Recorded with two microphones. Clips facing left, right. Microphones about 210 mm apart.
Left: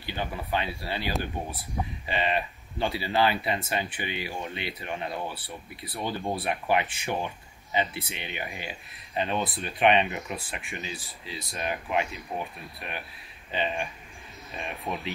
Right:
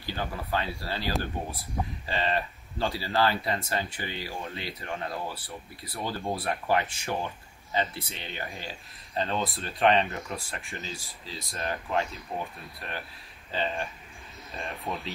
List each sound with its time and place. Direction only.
0.0 s a sound: 20° left (ahead or behind)
0.8 s speech: 20° left (ahead or behind)
14.9 s speech: centre (ahead or behind)